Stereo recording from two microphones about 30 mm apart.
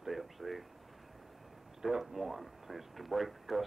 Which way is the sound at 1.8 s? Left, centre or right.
Centre.